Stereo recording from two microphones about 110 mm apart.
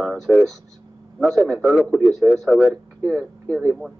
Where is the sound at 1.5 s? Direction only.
10° right (ahead or behind).